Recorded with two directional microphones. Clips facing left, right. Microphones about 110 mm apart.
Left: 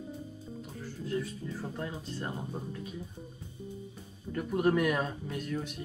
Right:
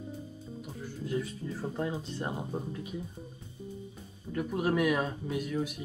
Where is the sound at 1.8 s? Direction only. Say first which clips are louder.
Right 4 dB; 20° right (ahead or behind).